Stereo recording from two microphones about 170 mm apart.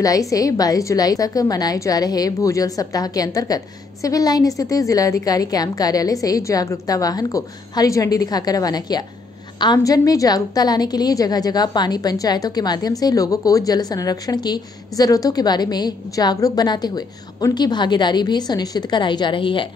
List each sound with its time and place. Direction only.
0.0 s a woman's voice: 20° left (ahead or behind)